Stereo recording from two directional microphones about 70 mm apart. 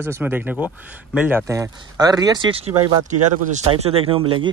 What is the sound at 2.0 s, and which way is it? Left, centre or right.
Speech, right.